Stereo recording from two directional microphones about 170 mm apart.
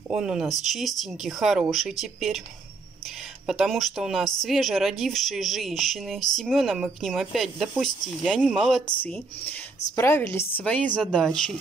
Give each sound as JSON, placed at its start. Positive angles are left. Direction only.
{"t": 0.1, "sound": "a woman's voice", "side_deg": -5}
{"t": 3.4, "sound": "a woman's voice", "side_deg": 0}